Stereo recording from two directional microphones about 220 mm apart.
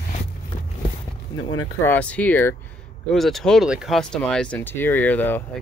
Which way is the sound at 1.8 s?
5° left (ahead or behind).